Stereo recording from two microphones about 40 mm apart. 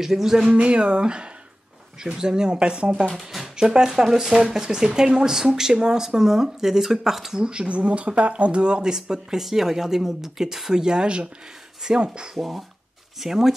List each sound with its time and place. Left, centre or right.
0.0 s speech: centre
0.5 s speech: right
3.2 s speech: centre
3.5 s speech: centre
7.3 s speech: right
9.1 s speech: centre
12.4 s speech: centre